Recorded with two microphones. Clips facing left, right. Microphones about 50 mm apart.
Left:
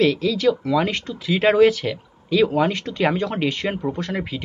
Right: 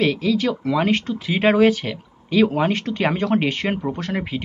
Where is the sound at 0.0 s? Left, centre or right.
Right.